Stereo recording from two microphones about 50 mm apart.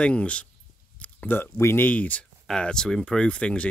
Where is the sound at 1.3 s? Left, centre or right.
Left.